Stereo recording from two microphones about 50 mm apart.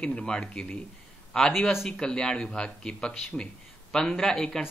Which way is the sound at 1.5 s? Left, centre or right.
Centre.